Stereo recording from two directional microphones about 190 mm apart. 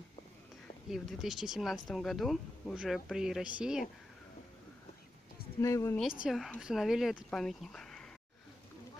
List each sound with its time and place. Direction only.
0.8 s speech: centre (ahead or behind)
5.6 s a woman's voice: 15° left (ahead or behind)
6.2 s speech: centre (ahead or behind)